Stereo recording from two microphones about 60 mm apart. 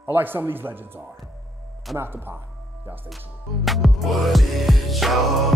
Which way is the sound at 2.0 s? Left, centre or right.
Right.